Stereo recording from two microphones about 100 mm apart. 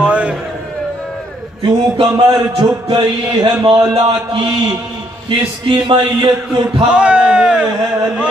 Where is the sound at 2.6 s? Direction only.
50° right (ahead or behind).